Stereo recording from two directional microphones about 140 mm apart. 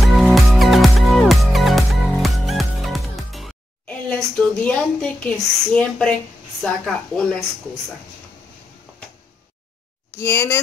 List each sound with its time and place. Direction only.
0.0 s music: centre (ahead or behind)
3.8 s a woman's voice: 10° left (ahead or behind)
10.1 s speech: 20° left (ahead or behind)